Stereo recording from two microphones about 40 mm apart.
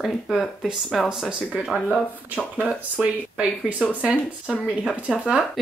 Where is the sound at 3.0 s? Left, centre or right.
Right.